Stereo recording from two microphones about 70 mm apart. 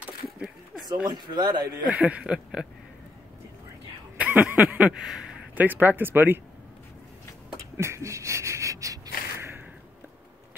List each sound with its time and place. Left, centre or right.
1.0 s speech: right
1.9 s speech: right
4.2 s a sound: right
4.7 s speech: right
5.0 s a man's voice: centre
5.6 s speech: right
7.5 s a sound: right